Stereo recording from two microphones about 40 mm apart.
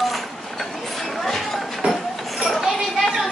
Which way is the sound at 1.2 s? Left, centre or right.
Centre.